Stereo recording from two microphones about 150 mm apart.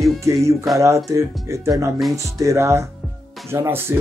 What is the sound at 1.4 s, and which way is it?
Speech, 20° right (ahead or behind).